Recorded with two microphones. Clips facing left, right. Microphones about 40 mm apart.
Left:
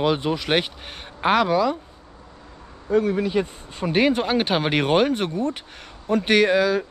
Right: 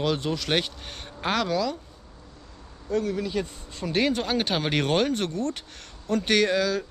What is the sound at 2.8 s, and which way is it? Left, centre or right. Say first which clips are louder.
Speech: left 6 dB; left.